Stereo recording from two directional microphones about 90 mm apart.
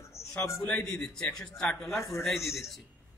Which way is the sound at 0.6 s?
15° left (ahead or behind).